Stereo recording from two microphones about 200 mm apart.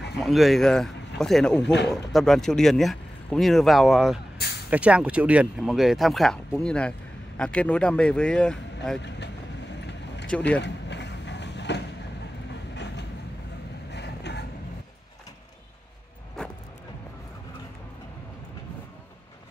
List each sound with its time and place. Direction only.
0.2 s speech: centre (ahead or behind)
1.6 s speech: 60° left (ahead or behind)
1.9 s speech: centre (ahead or behind)
10.6 s vehicle: 60° left (ahead or behind)
12.7 s train: 60° left (ahead or behind)
13.9 s vehicle: 55° left (ahead or behind)
16.4 s vehicle: 5° left (ahead or behind)